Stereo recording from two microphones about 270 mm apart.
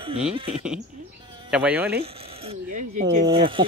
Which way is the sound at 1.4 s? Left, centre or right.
Centre.